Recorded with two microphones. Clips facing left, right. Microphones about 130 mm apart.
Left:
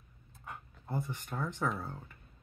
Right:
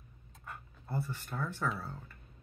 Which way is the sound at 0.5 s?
15° left (ahead or behind).